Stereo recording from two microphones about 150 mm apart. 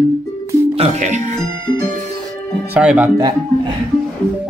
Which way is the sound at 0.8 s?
55° right (ahead or behind).